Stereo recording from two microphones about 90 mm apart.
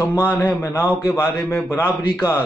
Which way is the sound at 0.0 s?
30° left (ahead or behind).